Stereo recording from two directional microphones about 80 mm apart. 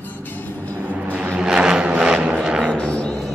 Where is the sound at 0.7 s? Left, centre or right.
Right.